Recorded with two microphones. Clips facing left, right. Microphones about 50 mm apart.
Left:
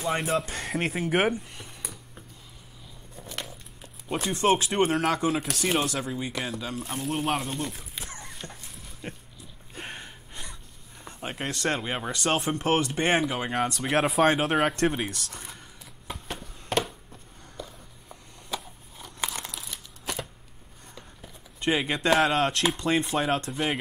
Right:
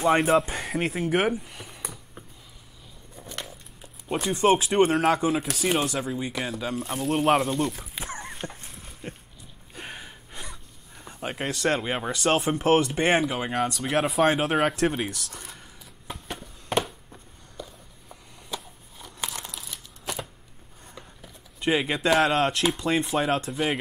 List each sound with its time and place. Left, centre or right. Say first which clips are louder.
0.7 s speech: right 1 dB; centre
3.2 s a sound: even; centre
4.3 s speech: right 3 dB; centre
8.0 s dog: right 7 dB; right
9.0 s dog: even; centre
9.8 s gasp: even; centre
10.3 s speech: right 3 dB; centre
13.0 s speech: right 2 dB; centre
15.0 s a sound: right 1 dB; centre
18.0 s crumpling: right 1 dB; centre
21.2 s speech: even; centre